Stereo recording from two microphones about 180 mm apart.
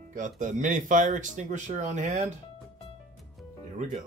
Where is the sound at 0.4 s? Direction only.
45° right (ahead or behind).